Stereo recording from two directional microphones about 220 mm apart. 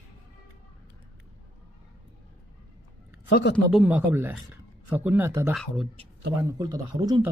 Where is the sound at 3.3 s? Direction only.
45° left (ahead or behind).